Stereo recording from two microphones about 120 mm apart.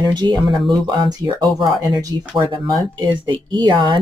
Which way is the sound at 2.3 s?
35° right (ahead or behind).